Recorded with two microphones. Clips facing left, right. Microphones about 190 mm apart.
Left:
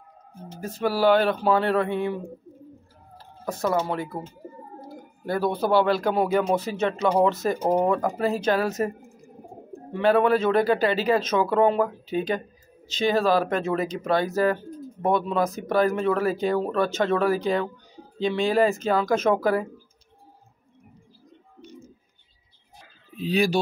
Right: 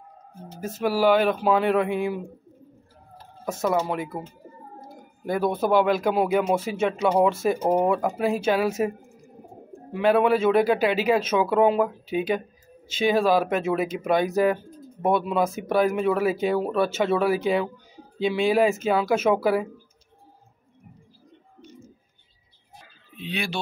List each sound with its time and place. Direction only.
0.6 s speech: 5° right (ahead or behind)
3.6 s speech: 5° right (ahead or behind)
5.4 s speech: 10° right (ahead or behind)
9.9 s speech: 5° right (ahead or behind)
23.1 s speech: 40° left (ahead or behind)